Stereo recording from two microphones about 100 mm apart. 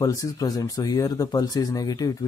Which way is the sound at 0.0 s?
35° left (ahead or behind).